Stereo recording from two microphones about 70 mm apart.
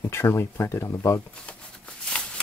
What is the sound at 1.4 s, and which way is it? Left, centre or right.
Shuffling cards, centre.